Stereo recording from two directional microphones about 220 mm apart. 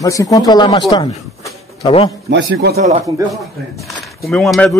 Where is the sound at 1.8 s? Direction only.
25° left (ahead or behind).